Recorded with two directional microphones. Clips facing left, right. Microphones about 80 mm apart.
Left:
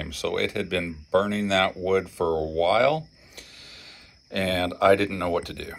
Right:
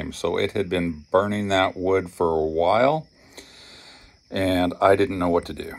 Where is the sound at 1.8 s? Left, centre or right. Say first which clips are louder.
Right 3 dB; right.